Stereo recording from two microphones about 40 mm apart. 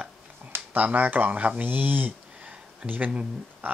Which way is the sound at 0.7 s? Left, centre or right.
Right.